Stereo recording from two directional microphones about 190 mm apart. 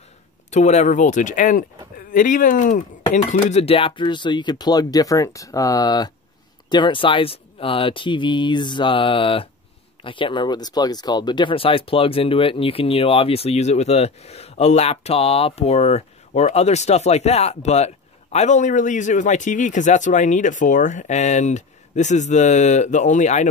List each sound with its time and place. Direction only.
0.5 s speech: 35° left (ahead or behind)